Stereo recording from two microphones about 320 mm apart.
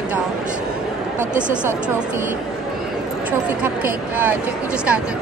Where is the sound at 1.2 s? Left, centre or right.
Right.